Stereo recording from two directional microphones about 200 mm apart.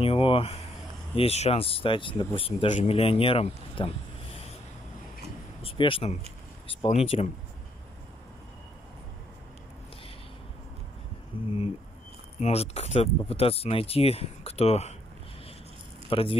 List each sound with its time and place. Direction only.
0.0 s speech: 25° left (ahead or behind)
5.6 s speech: 25° left (ahead or behind)
11.3 s a sound: 25° left (ahead or behind)
12.4 s speech: 35° left (ahead or behind)
16.1 s speech: 30° left (ahead or behind)